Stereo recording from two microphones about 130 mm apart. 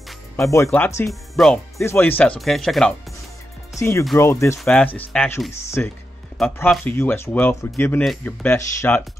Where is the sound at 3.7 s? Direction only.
20° left (ahead or behind).